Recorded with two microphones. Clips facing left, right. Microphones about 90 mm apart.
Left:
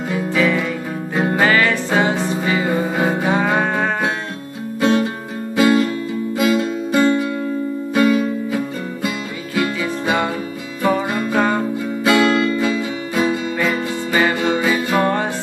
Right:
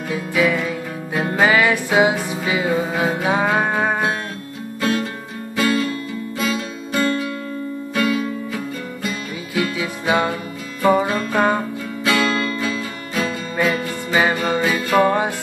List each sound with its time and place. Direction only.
0.3 s music: 10° right (ahead or behind)
4.7 s music: 20° left (ahead or behind)
9.8 s music: 10° right (ahead or behind)
11.1 s music: 15° left (ahead or behind)
11.3 s music: 15° right (ahead or behind)
12.0 s music: 20° left (ahead or behind)
13.6 s music: 15° right (ahead or behind)
14.6 s music: 15° left (ahead or behind)
15.0 s music: 10° right (ahead or behind)